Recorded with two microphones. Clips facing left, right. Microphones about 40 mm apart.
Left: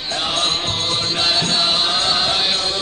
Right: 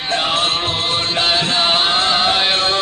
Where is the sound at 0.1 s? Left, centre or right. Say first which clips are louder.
Right 3 dB; right.